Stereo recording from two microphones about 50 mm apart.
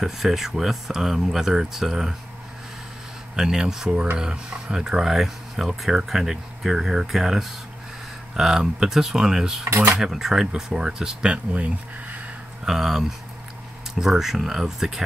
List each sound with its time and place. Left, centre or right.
0.0 s speech: centre
3.3 s speech: centre
9.7 s speech: right
9.9 s speech: centre
11.5 s speech: right
12.6 s speech: centre